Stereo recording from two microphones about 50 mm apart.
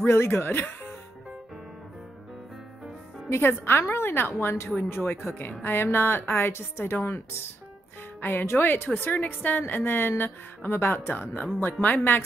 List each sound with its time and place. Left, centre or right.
0.0 s speech: left
3.3 s a woman's voice: left
8.2 s a woman's voice: left